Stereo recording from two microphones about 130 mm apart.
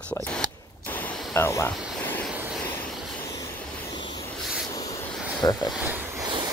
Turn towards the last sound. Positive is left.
turn(degrees=-35)  # may be behind; listen again after turning